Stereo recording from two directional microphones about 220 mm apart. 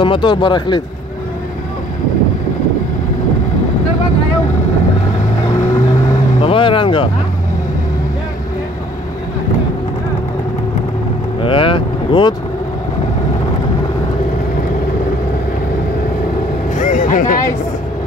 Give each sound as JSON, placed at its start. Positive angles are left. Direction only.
{"t": 0.0, "sound": "speech", "side_deg": 20}
{"t": 6.4, "sound": "vehicle", "side_deg": 25}
{"t": 11.4, "sound": "speech", "side_deg": 25}
{"t": 16.7, "sound": "vehicle", "side_deg": 35}